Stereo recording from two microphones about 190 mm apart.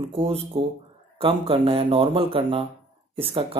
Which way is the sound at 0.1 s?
30° right (ahead or behind).